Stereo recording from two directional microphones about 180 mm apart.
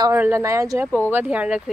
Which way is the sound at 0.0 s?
15° right (ahead or behind).